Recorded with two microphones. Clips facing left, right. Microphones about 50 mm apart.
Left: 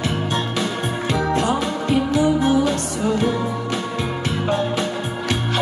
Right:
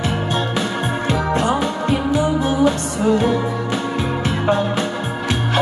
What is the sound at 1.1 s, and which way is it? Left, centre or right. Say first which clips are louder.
Music: right 1 dB; right.